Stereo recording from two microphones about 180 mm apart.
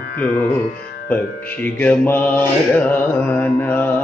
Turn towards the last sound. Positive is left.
turn(degrees=10)  # may be behind; listen again after turning